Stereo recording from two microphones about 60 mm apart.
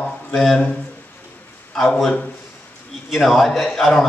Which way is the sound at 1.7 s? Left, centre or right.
Centre.